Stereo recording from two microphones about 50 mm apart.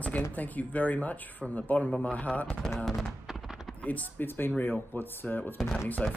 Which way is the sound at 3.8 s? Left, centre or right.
Left.